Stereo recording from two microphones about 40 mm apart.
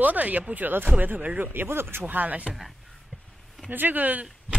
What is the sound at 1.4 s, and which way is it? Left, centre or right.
Speech, right.